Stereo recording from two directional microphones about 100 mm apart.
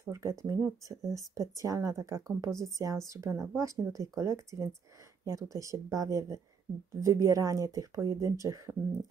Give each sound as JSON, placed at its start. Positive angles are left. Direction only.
{"t": 0.0, "sound": "speech", "side_deg": -30}